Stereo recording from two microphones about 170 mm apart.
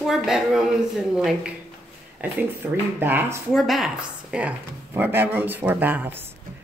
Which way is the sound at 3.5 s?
Centre (ahead or behind).